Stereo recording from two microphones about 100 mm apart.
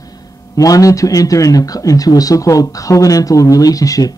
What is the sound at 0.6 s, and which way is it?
A man's voice, 35° left (ahead or behind).